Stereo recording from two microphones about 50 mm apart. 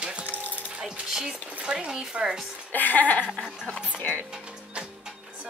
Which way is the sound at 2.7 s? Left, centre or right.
Left.